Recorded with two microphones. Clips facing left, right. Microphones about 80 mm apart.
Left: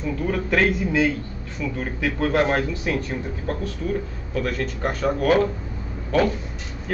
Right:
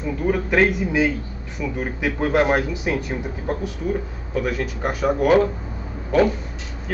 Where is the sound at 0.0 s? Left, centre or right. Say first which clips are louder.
Right 3 dB; centre.